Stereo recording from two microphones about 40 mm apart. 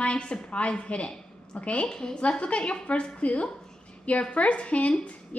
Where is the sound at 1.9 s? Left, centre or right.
Centre; by 5.1 s left.